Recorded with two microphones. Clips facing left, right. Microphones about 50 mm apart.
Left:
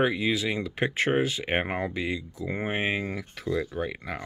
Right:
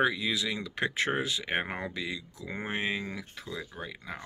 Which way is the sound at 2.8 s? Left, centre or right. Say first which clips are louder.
Left 4 dB; left.